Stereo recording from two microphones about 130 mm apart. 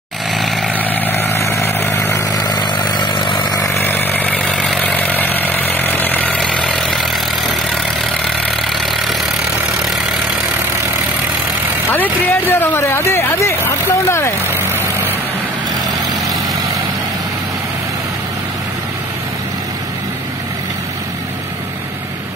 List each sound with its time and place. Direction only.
0.3 s vehicle: centre (ahead or behind)
0.7 s vehicle: 15° left (ahead or behind); by 3.6 s 35° left (ahead or behind)
3.6 s chainsaw: 15° left (ahead or behind)
11.9 s speech: 15° left (ahead or behind)